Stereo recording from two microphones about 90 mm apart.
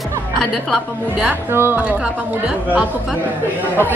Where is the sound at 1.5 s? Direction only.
25° right (ahead or behind).